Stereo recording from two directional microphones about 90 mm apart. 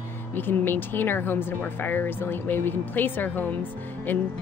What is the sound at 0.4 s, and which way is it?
Speech, 25° left (ahead or behind).